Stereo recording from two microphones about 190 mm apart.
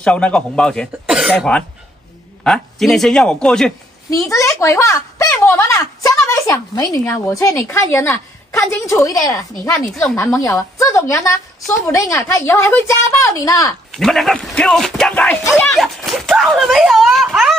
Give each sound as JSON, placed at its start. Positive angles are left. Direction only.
{"t": 0.0, "sound": "speech", "side_deg": 5}
{"t": 4.1, "sound": "a woman's voice", "side_deg": 15}
{"t": 13.9, "sound": "speech", "side_deg": 0}